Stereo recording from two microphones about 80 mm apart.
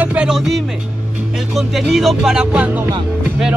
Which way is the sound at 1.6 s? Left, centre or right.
Centre.